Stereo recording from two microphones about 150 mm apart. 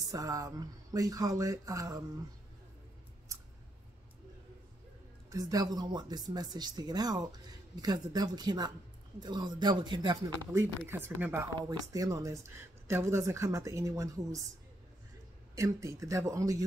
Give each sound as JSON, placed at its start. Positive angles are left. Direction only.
{"t": 0.1, "sound": "speech", "side_deg": -25}
{"t": 5.3, "sound": "speech", "side_deg": -25}
{"t": 10.9, "sound": "speech", "side_deg": -15}
{"t": 15.5, "sound": "speech", "side_deg": -20}